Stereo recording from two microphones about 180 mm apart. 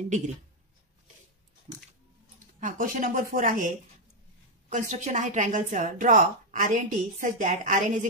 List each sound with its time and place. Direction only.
1.7 s dog: 30° right (ahead or behind)
2.6 s a woman's voice: 45° right (ahead or behind)